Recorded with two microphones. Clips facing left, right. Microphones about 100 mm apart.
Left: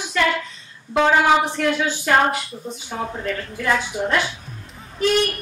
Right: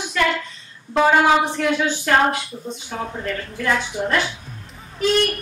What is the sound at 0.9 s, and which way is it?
Speech, 5° right (ahead or behind).